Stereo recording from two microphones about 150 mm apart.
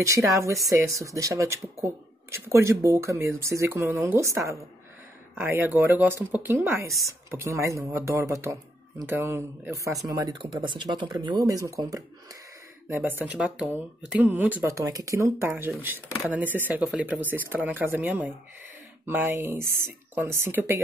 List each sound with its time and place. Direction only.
0.0 s speech: 20° right (ahead or behind)